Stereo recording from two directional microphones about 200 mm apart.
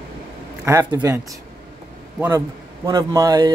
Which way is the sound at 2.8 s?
15° right (ahead or behind).